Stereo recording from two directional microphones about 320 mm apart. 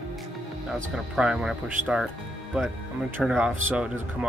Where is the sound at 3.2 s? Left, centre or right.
Centre.